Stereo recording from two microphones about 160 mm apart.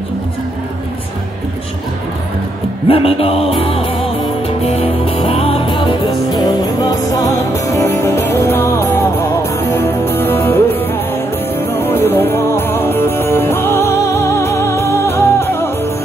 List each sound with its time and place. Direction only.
2.9 s music: 35° left (ahead or behind); by 15.9 s 15° left (ahead or behind)